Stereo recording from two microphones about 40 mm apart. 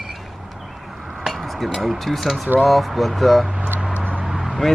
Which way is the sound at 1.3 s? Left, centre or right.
Centre.